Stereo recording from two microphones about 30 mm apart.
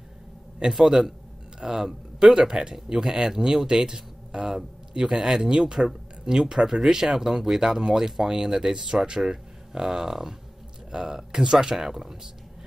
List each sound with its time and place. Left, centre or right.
0.8 s a man's voice: centre